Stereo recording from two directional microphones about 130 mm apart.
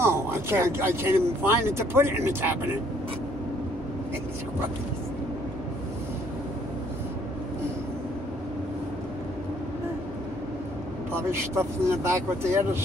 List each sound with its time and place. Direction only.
0.0 s speech: 20° right (ahead or behind)
11.2 s speech: 20° right (ahead or behind)